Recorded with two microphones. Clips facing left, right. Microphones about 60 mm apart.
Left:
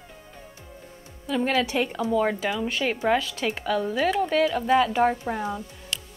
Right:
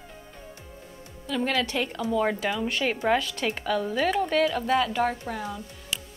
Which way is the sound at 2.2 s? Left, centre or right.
Centre.